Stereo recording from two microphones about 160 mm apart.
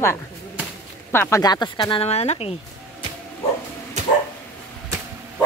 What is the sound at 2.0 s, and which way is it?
Speech, 40° left (ahead or behind).